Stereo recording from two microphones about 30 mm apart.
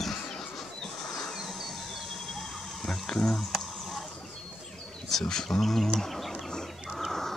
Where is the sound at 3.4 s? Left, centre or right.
Centre.